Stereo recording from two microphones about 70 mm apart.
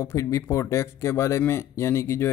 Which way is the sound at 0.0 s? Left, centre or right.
Left.